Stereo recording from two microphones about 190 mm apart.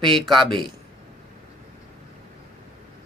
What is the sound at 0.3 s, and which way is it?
Speech, 25° right (ahead or behind).